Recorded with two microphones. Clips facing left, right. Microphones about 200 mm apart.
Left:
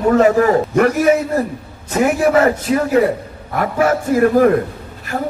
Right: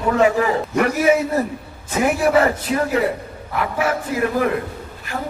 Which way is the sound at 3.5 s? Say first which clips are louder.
Left 5 dB; 45° left (ahead or behind).